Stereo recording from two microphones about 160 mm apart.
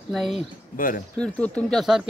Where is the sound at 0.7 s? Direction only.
60° left (ahead or behind).